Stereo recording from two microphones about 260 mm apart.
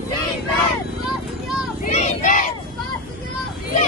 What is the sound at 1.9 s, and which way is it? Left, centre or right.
Battle cry, left.